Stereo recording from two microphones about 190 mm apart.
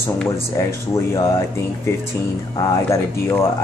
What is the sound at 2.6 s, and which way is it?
Speech, 20° left (ahead or behind).